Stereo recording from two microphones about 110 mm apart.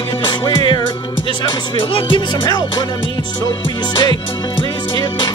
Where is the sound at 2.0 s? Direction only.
50° left (ahead or behind).